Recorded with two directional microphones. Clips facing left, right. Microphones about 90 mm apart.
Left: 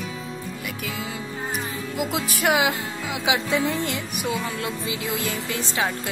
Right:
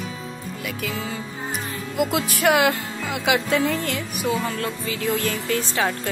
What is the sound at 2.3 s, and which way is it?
Music, 15° left (ahead or behind).